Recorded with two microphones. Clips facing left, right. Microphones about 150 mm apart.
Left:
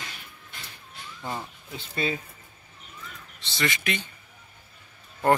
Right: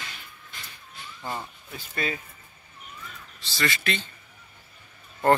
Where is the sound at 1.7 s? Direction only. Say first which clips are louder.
Left 2 dB; 25° left (ahead or behind).